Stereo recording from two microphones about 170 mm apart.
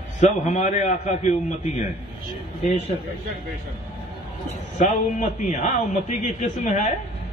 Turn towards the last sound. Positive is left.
turn(degrees=45)  # may be behind; listen again after turning